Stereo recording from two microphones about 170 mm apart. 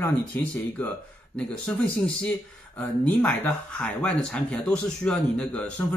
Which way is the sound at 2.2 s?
10° left (ahead or behind).